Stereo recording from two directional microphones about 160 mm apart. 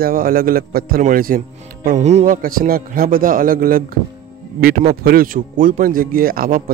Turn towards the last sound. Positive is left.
turn(degrees=-60)  # may be behind; listen again after turning